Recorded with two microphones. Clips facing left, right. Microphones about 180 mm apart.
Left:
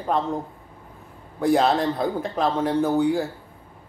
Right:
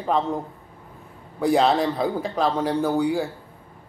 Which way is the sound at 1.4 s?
Centre (ahead or behind).